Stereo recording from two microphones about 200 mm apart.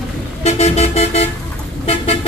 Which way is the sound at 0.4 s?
35° left (ahead or behind).